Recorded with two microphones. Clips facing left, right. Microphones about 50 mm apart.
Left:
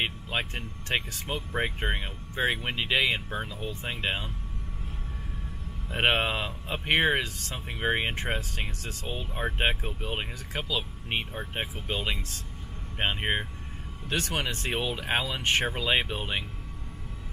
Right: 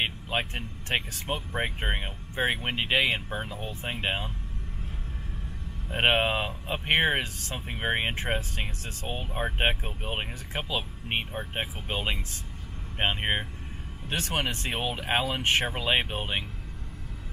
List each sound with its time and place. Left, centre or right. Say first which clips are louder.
0.0 s speech: right 1 dB; centre
3.4 s speech: left 1 dB; right
3.8 s speech: right 1 dB; right
5.9 s speech: right 1 dB; centre
8.4 s speech: right 1 dB; right
14.1 s speech: even; right